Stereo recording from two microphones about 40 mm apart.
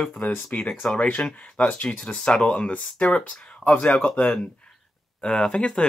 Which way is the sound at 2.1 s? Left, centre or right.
Left.